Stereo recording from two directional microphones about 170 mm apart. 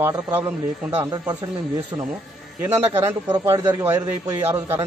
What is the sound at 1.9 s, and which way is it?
Speech, 15° right (ahead or behind).